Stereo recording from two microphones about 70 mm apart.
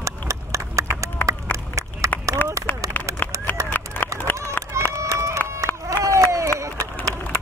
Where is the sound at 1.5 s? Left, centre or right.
Left.